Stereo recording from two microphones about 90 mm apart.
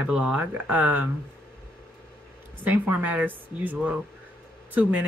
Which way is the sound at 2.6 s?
20° right (ahead or behind).